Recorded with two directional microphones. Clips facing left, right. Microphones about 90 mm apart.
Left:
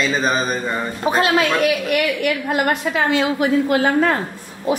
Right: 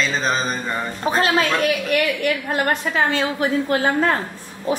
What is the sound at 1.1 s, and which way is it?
A woman's voice, 35° right (ahead or behind).